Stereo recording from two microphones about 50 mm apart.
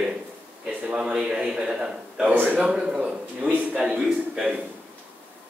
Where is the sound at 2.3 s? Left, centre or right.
Right.